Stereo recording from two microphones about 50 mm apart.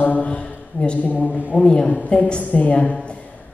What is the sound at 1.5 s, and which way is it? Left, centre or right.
A woman's voice, centre.